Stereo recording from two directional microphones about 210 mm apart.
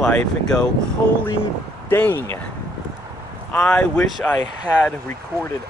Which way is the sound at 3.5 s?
5° left (ahead or behind).